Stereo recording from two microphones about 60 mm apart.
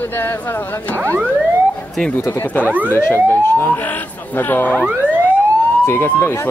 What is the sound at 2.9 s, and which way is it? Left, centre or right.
Speech, left.